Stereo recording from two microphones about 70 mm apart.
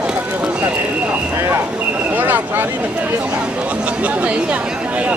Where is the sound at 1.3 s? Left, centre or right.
Right.